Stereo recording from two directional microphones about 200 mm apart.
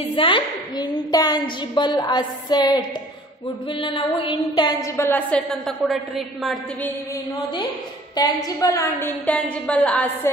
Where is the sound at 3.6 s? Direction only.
25° left (ahead or behind); by 6.9 s centre (ahead or behind).